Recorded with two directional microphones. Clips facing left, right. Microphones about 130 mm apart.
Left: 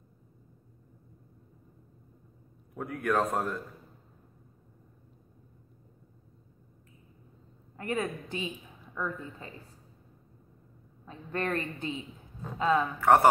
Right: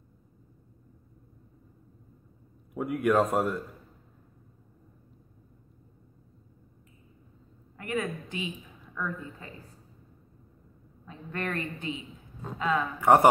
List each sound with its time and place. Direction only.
2.7 s speech: 10° right (ahead or behind)
7.7 s a woman's voice: 35° left (ahead or behind)
8.9 s a woman's voice: 20° left (ahead or behind)
11.1 s a woman's voice: 30° left (ahead or behind)
13.0 s speech: 15° right (ahead or behind)